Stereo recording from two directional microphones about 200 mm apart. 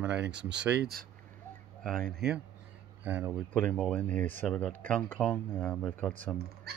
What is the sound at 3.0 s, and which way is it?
Speech, 10° right (ahead or behind).